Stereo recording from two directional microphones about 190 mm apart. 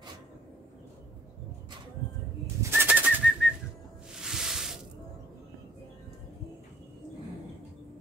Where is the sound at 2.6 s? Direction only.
10° right (ahead or behind).